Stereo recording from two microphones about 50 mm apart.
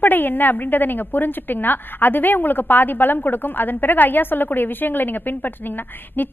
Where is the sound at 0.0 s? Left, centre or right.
Left.